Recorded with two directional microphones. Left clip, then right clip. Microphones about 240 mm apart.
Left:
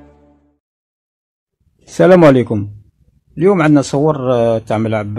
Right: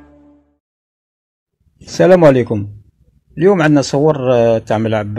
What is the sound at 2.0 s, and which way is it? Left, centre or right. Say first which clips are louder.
Speech: even; left.